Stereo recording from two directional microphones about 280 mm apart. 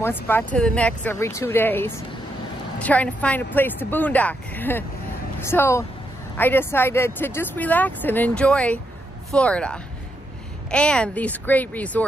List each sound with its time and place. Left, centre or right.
0.0 s speech: centre